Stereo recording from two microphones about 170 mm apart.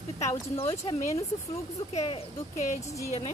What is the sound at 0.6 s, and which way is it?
Speech, 35° left (ahead or behind).